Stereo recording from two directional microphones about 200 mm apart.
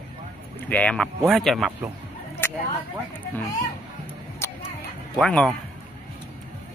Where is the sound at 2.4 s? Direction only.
10° left (ahead or behind).